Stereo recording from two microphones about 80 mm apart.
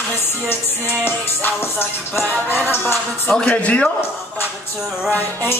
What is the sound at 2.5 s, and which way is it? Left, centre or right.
Music, left.